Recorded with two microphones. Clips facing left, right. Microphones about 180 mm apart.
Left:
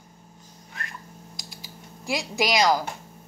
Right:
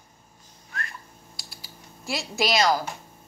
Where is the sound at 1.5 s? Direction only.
15° left (ahead or behind).